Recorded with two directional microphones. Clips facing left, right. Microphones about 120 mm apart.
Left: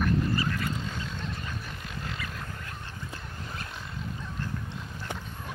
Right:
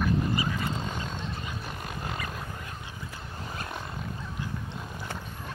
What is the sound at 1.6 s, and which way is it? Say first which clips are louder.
Roaring cats: right 3 dB; 45° right (ahead or behind).